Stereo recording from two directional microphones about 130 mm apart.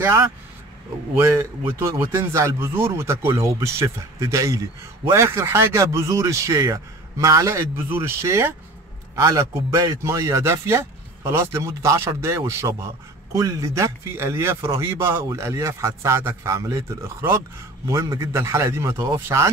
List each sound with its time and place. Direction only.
0.0 s a man's voice: 20° right (ahead or behind)